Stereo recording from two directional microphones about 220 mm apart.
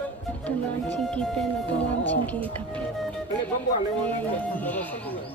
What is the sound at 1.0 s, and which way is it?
Speech, 5° left (ahead or behind).